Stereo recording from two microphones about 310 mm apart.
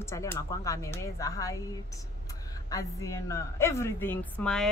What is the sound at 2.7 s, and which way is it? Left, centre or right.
A woman's voice, centre.